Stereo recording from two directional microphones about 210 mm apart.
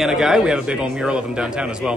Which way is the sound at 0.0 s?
Centre (ahead or behind).